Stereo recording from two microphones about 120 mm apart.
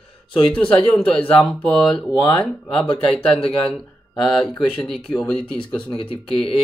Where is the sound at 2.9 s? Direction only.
10° left (ahead or behind).